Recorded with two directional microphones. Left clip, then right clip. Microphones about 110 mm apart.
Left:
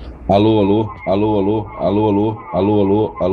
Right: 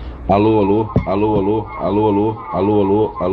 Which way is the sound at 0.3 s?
55° left (ahead or behind).